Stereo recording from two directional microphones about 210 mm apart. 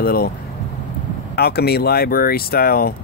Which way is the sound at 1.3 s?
50° left (ahead or behind).